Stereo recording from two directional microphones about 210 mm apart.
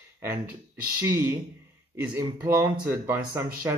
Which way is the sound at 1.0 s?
10° right (ahead or behind).